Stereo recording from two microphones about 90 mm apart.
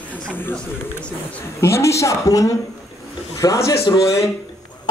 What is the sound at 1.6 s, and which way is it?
A woman's voice, 30° left (ahead or behind).